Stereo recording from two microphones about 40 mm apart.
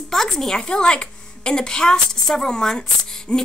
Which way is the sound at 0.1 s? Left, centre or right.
Centre.